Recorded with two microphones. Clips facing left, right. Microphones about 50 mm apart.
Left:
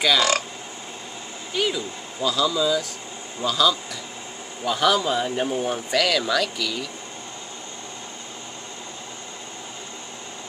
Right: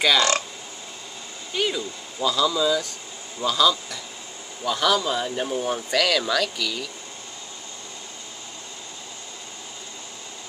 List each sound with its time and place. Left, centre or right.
0.0 s speech: centre
1.5 s speech: centre